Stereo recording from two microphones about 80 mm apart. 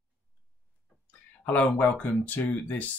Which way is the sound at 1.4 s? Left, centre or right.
Left.